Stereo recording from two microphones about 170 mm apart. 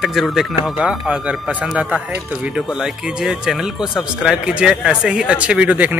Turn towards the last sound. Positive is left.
turn(degrees=-10)  # may be behind; listen again after turning